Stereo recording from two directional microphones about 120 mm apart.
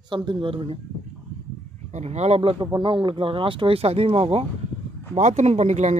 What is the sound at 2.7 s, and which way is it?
Speech, 45° right (ahead or behind).